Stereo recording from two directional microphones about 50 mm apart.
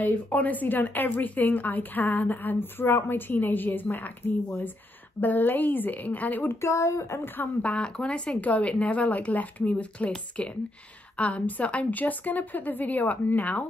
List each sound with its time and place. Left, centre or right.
0.0 s speech: left
5.2 s speech: left
6.6 s speech: left
7.6 s speech: left
8.4 s speech: left